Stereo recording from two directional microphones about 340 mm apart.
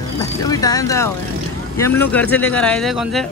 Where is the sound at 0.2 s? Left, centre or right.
Centre.